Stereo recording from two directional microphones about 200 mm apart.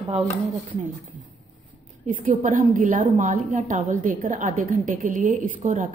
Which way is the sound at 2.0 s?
40° right (ahead or behind).